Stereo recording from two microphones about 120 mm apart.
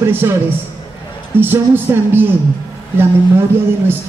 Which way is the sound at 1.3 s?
15° right (ahead or behind).